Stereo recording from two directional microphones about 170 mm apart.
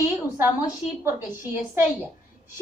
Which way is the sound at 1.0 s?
15° right (ahead or behind).